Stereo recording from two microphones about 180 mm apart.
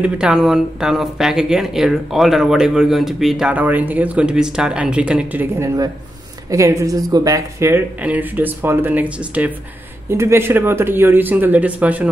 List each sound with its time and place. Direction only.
0.0 s speech: 5° right (ahead or behind)